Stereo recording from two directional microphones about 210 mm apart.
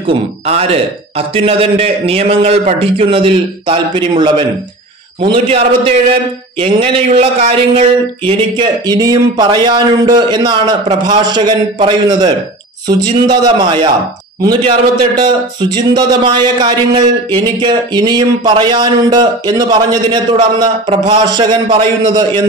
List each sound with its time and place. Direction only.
0.0 s speech: 30° right (ahead or behind)